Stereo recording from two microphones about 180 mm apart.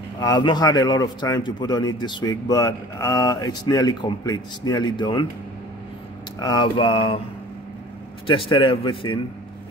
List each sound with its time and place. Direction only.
0.2 s a man's voice: 25° left (ahead or behind)
6.4 s a man's voice: 25° left (ahead or behind)
8.3 s a man's voice: 30° left (ahead or behind)